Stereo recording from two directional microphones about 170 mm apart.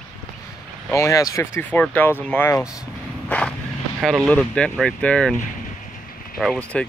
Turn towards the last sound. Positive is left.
turn(degrees=5)  # may be behind; listen again after turning